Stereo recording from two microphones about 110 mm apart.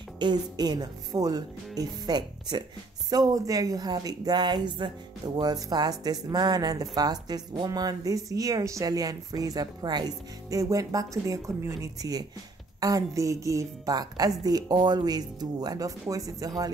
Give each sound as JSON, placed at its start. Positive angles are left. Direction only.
{"t": 0.2, "sound": "speech", "side_deg": -40}